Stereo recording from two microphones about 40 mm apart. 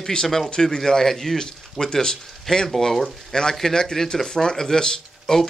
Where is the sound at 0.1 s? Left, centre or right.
Centre.